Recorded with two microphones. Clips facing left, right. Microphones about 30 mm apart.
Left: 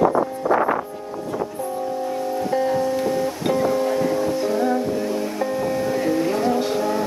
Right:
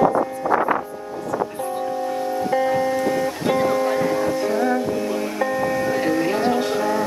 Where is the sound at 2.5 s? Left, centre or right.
Centre.